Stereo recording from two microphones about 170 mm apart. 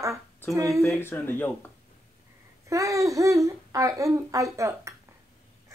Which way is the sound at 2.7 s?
20° right (ahead or behind).